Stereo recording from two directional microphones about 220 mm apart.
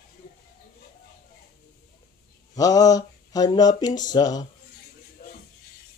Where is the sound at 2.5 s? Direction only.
15° left (ahead or behind).